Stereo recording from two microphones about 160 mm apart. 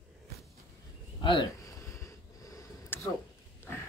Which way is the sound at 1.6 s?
20° left (ahead or behind).